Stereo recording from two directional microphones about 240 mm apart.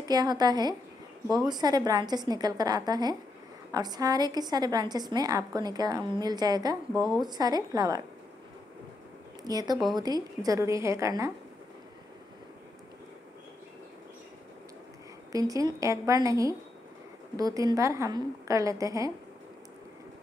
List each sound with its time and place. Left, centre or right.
0.1 s a woman's voice: centre
9.4 s a woman's voice: centre
15.3 s a woman's voice: centre